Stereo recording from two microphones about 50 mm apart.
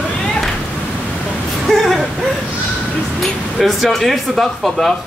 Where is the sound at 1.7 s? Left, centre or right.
Centre.